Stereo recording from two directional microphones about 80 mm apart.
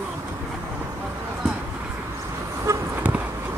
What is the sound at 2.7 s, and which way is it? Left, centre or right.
Toot, right.